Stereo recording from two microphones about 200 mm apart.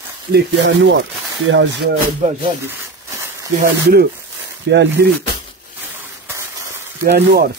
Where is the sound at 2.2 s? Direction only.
35° right (ahead or behind).